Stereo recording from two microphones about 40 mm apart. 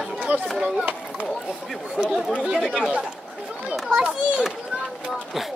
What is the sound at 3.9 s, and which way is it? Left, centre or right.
Speech, right.